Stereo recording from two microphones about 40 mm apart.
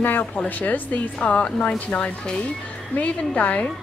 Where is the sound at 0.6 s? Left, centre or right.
Left.